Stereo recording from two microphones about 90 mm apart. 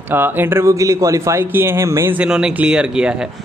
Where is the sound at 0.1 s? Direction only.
25° right (ahead or behind).